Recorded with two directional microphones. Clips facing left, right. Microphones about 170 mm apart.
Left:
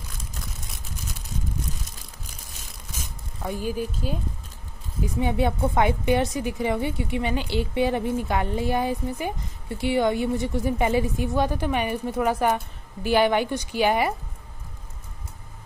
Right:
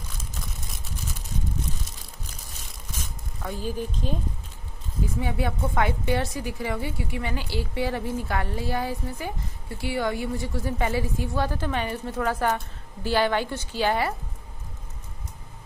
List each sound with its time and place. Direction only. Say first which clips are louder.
3.4 s a woman's voice: left 3 dB; 10° left (ahead or behind)
5.0 s a woman's voice: left 4 dB; 25° left (ahead or behind)